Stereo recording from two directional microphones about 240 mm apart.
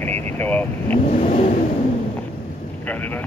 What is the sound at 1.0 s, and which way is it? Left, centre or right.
Vehicle, left.